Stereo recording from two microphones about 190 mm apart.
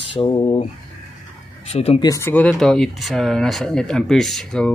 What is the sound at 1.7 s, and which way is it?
Speech, 30° left (ahead or behind).